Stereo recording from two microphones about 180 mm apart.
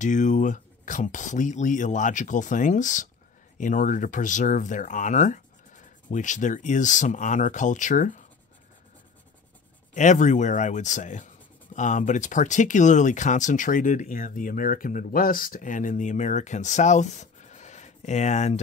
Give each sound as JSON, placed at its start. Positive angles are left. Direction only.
{"t": 0.0, "sound": "speech", "side_deg": 45}
{"t": 9.9, "sound": "speech", "side_deg": 40}